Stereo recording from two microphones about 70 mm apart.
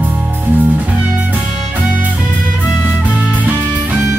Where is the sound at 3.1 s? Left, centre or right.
Right.